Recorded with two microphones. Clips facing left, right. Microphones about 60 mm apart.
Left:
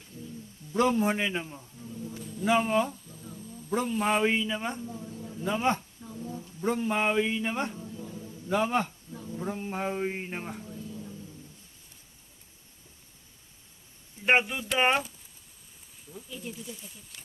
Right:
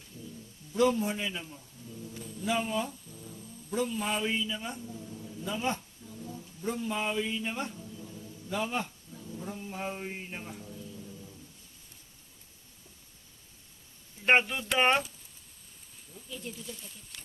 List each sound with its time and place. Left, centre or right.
0.7 s a man's voice: left
1.8 s music: left
2.4 s a man's voice: left
4.8 s a sound: left
5.5 s a sound: left
6.6 s a man's voice: left
14.2 s speech: centre
16.3 s speech: centre